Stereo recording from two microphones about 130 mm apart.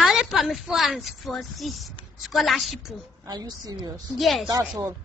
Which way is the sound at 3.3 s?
30° right (ahead or behind).